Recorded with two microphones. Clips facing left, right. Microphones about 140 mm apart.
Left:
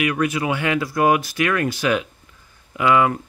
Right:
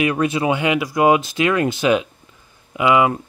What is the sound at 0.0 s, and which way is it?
Speech, 25° right (ahead or behind).